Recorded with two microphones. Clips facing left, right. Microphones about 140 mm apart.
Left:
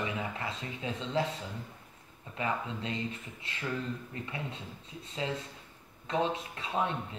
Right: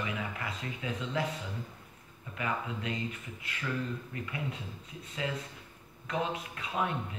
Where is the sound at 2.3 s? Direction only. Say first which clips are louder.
Left 1 dB; 30° left (ahead or behind).